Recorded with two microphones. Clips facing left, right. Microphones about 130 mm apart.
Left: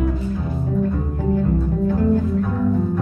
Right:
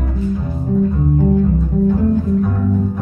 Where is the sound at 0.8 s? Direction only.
Centre (ahead or behind).